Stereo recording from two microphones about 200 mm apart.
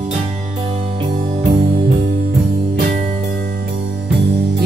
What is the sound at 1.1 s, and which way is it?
Music, 35° right (ahead or behind).